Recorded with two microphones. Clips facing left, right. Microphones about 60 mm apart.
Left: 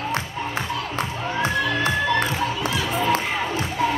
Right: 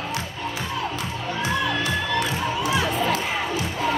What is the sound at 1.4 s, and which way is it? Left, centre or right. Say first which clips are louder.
Music: left 2 dB; left.